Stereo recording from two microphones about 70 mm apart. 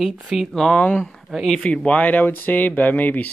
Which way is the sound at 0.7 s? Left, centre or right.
Centre.